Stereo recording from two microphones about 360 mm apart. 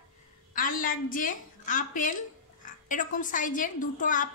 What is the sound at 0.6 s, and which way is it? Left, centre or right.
A woman's voice, left.